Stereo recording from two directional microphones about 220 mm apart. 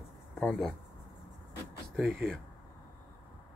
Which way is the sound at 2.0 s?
Centre (ahead or behind).